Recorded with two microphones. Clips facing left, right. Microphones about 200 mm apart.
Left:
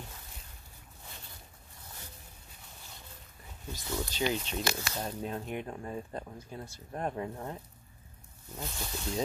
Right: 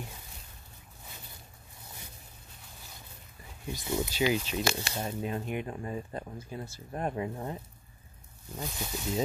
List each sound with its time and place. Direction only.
3.6 s speech: 15° right (ahead or behind)
4.6 s speech: 25° right (ahead or behind)
4.9 s speech: 5° right (ahead or behind)